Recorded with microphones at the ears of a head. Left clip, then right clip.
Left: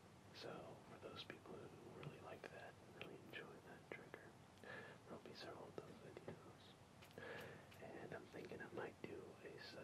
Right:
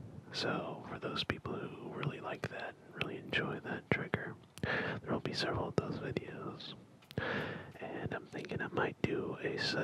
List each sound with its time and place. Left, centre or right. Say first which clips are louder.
0.3 s speech: right 18 dB; right